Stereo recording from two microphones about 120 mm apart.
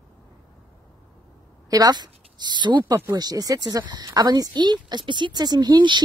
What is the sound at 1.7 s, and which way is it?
Speech, 35° right (ahead or behind).